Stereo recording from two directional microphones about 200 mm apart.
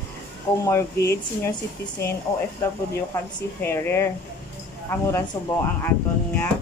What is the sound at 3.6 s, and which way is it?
Speech, 10° left (ahead or behind).